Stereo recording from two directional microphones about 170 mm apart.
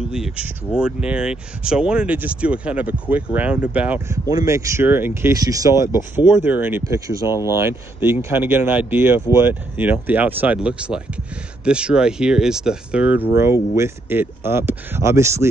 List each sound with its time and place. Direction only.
0.7 s speech: 5° right (ahead or behind)
4.3 s speech: 20° right (ahead or behind)